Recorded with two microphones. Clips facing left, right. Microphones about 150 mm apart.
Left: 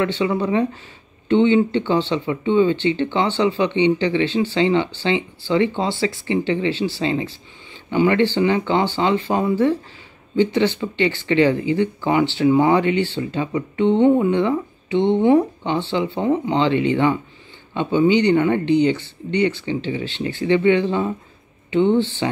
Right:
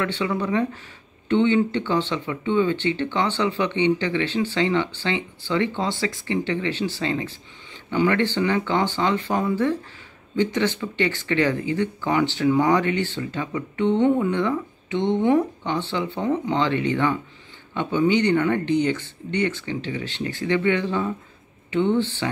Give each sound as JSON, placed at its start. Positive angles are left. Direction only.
{"t": 0.0, "sound": "speech", "side_deg": 20}